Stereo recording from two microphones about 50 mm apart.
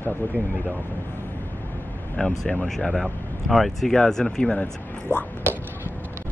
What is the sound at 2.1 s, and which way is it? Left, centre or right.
A man's voice, centre.